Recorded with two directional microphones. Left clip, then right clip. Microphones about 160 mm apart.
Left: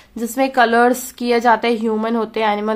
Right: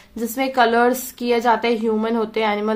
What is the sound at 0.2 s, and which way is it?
A woman's voice, 35° left (ahead or behind).